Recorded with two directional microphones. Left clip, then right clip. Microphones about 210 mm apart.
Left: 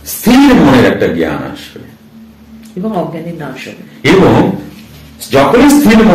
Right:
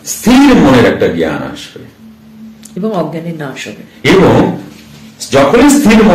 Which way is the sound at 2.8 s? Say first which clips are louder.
Right 2 dB; 50° right (ahead or behind).